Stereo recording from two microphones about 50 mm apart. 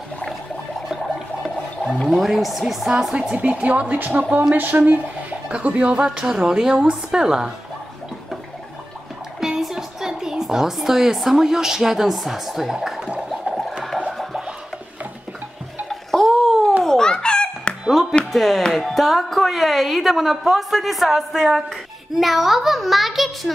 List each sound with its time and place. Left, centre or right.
1.9 s a woman's voice: centre
3.3 s a woman's voice: right
5.5 s a woman's voice: right
6.2 s a woman's voice: centre
9.4 s a woman's voice: centre
13.3 s whale vocalization: centre
14.1 s music: centre
15.9 s bathtub: centre
16.8 s giggle: centre
18.3 s a woman's voice: centre